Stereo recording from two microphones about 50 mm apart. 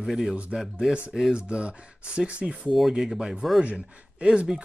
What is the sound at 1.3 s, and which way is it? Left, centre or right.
Speech, centre.